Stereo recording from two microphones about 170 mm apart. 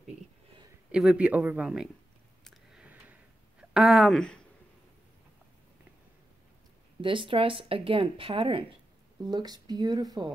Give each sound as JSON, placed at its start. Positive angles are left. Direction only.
{"t": 0.9, "sound": "speech", "side_deg": -5}
{"t": 2.4, "sound": "a sound", "side_deg": 0}
{"t": 3.7, "sound": "speech", "side_deg": 0}
{"t": 7.0, "sound": "speech", "side_deg": -30}